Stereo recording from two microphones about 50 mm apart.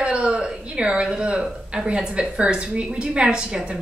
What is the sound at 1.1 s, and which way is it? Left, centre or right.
A woman's voice, right.